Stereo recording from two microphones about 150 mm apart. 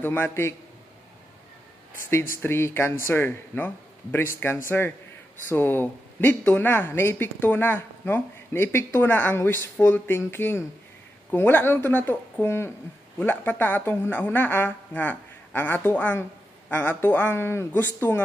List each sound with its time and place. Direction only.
0.0 s speech: 15° left (ahead or behind)
2.3 s speech: 15° left (ahead or behind)